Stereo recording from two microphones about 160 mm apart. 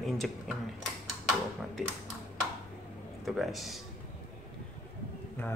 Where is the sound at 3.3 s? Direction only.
Centre (ahead or behind).